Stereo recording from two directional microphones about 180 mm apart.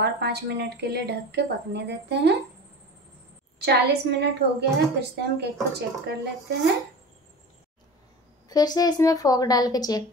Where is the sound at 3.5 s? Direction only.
65° right (ahead or behind).